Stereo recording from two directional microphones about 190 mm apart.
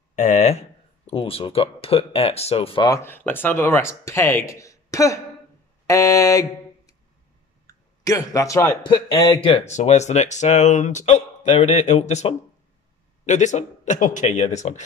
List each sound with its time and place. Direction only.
0.1 s speech: 40° left (ahead or behind); by 5.2 s 15° left (ahead or behind)
5.9 s mantra: 15° left (ahead or behind)
7.6 s speech: 20° left (ahead or behind)
9.7 s speech: 35° left (ahead or behind)